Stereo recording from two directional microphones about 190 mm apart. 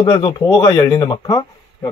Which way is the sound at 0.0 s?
25° left (ahead or behind).